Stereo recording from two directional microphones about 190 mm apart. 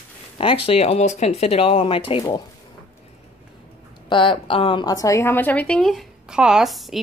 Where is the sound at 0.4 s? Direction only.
30° left (ahead or behind).